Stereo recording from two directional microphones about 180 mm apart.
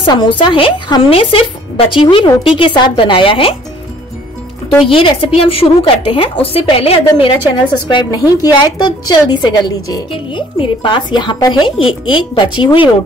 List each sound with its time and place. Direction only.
0.0 s a woman's voice: 25° left (ahead or behind)
4.8 s a woman's voice: 30° left (ahead or behind)